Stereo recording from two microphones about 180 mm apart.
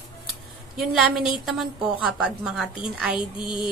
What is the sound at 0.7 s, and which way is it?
A woman's voice, centre (ahead or behind).